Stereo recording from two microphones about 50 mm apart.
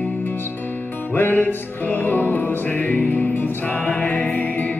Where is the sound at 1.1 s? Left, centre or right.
Left.